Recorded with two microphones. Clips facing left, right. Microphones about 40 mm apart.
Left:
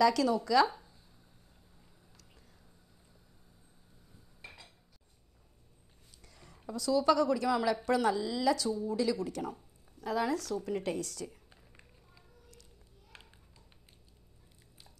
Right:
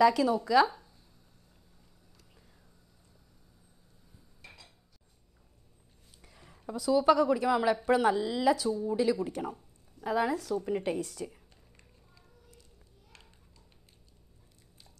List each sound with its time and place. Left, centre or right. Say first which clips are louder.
0.0 s speech: right 3 dB; centre
0.7 s a sound: even; centre
4.4 s dishes: left 2 dB; left
6.2 s a sound: right 1 dB; centre
6.7 s a woman's voice: right 3 dB; right
8.6 s speech: right 3 dB; centre
8.9 s a woman's voice: right 5 dB; right